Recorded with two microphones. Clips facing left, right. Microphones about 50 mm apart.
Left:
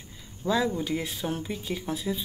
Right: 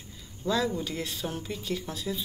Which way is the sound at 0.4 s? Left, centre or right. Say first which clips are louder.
Left 2 dB; centre.